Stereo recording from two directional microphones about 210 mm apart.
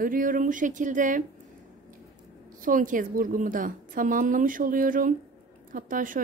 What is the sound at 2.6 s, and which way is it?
Speech, 40° right (ahead or behind).